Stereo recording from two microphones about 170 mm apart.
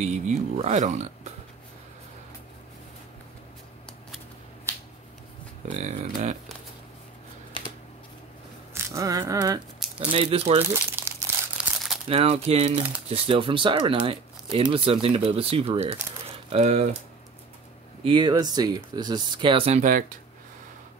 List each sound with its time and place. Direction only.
0.0 s speech: 40° right (ahead or behind)
5.7 s speech: 45° right (ahead or behind)
8.7 s a sound: 20° right (ahead or behind)
9.8 s a sound: 5° right (ahead or behind)
10.1 s speech: 35° right (ahead or behind)
10.7 s crumpling: 15° right (ahead or behind)
12.1 s speech: 35° right (ahead or behind)
18.0 s speech: 30° right (ahead or behind)
19.8 s speech: 50° right (ahead or behind)